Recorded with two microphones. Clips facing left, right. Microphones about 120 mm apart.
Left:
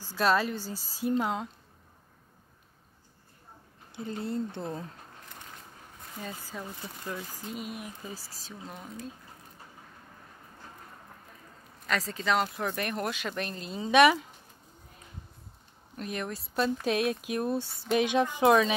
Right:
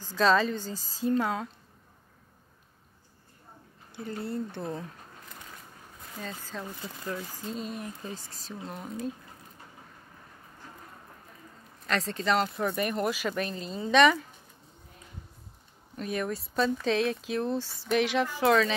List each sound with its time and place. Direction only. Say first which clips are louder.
0.1 s speech: right 2 dB; 10° left (ahead or behind)
3.9 s speech: left 1 dB; 20° left (ahead or behind)
6.2 s speech: right 1 dB; 10° left (ahead or behind)
11.9 s speech: right 1 dB; 5° left (ahead or behind)
13.7 s speech: left 1 dB; 15° left (ahead or behind)
16.0 s speech: right 4 dB; centre (ahead or behind); by 18.8 s 20° left (ahead or behind)